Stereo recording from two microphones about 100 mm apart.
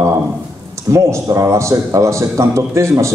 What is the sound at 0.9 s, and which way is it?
A man's voice, 30° right (ahead or behind).